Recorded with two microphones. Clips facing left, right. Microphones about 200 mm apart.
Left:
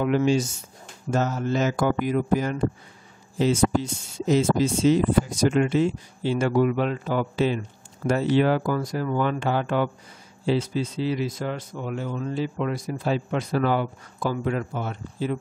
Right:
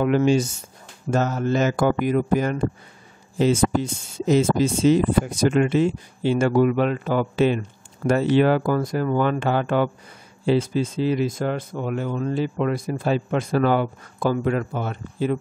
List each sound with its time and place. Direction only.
0.0 s speech: 55° right (ahead or behind)